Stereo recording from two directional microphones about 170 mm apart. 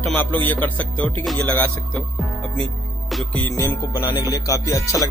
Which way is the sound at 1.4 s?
5° left (ahead or behind).